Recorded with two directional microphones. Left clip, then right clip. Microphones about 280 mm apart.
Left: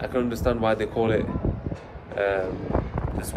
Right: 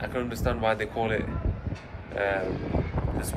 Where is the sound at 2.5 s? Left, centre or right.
Left.